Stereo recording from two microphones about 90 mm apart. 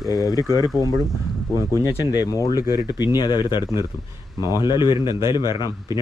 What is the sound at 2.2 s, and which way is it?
Speech, 45° left (ahead or behind).